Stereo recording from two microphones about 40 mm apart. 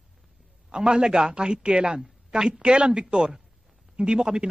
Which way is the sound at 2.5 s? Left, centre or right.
Right.